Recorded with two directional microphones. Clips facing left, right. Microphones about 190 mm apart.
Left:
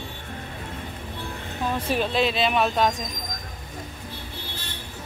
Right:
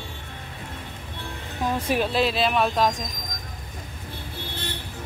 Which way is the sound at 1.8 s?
10° right (ahead or behind).